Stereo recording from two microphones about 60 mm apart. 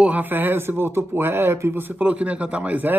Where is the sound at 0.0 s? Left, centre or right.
Right.